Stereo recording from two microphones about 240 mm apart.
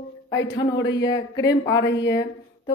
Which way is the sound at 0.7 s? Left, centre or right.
Left.